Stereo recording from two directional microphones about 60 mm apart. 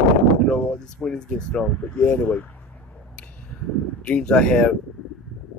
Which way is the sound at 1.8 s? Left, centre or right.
Left.